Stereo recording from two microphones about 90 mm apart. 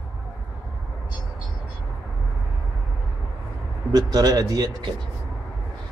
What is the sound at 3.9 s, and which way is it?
Speech, 45° right (ahead or behind).